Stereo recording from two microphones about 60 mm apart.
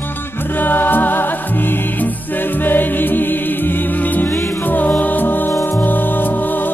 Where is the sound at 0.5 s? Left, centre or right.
Left.